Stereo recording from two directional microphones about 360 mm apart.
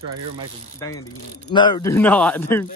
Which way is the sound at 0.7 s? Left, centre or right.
Centre.